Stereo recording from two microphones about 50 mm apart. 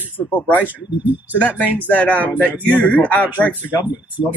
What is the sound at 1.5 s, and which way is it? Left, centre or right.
Speech, right.